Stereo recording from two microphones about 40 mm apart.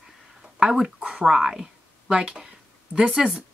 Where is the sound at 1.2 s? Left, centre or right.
Centre.